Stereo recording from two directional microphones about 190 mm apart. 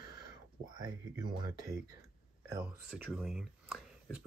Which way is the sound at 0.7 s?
20° right (ahead or behind).